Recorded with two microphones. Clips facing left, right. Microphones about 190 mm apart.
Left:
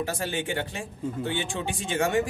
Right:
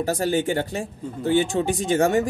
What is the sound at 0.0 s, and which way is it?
Speech, 40° right (ahead or behind).